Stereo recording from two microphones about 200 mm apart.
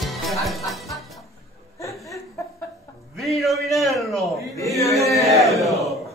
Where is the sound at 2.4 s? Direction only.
15° left (ahead or behind).